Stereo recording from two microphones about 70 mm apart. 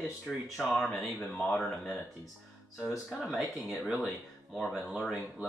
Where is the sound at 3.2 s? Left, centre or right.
Centre.